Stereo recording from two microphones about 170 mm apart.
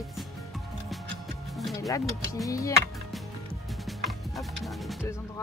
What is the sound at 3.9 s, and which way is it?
Music, centre (ahead or behind).